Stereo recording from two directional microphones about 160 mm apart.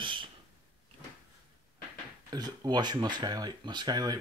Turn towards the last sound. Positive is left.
turn(degrees=-25)  # may be behind; listen again after turning